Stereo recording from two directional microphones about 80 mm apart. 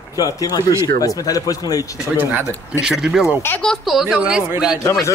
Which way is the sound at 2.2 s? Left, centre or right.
Right.